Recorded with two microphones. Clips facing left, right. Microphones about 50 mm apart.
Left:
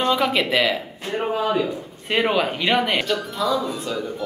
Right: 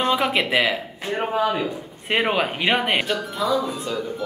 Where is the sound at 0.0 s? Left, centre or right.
Centre.